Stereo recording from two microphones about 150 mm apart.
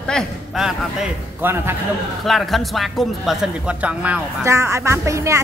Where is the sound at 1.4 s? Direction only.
15° right (ahead or behind).